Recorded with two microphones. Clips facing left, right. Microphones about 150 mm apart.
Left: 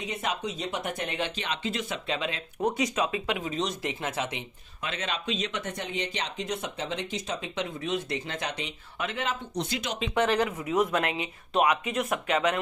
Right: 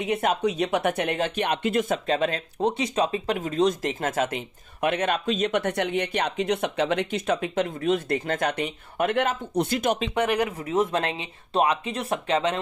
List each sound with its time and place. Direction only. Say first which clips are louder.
0.0 s speech: right 8 dB; 55° right (ahead or behind)
1.1 s speech: right 7 dB; 50° right (ahead or behind)
2.6 s speech: right 3 dB; 30° right (ahead or behind); by 10.0 s 50° right (ahead or behind)
10.1 s speech: right 1 dB; 15° right (ahead or behind)
10.7 s speech: right 2 dB; 25° right (ahead or behind)